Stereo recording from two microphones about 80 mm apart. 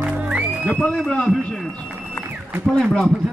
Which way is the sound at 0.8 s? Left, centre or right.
Centre.